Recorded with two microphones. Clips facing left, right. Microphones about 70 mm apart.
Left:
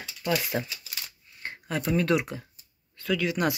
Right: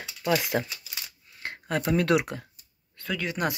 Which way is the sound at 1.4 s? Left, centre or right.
Right.